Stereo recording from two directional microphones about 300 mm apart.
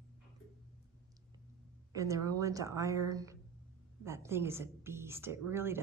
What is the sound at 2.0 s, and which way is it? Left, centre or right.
A woman's voice, centre.